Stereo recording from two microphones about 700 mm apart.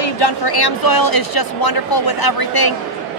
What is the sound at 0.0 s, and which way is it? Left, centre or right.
Speech, left.